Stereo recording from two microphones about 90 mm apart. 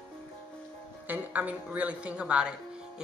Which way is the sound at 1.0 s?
20° right (ahead or behind).